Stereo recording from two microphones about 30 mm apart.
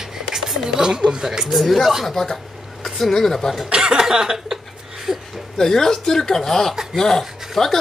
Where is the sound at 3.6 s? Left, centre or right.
Right.